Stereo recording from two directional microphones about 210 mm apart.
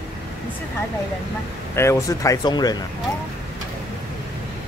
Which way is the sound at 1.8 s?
15° left (ahead or behind).